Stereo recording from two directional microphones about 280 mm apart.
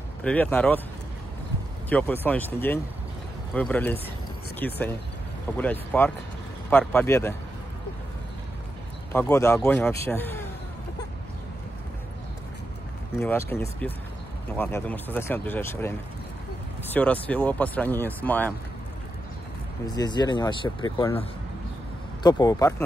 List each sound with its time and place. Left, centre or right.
0.2 s speech: centre
1.9 s speech: centre
9.1 s speech: centre
13.2 s speech: centre
19.9 s speech: centre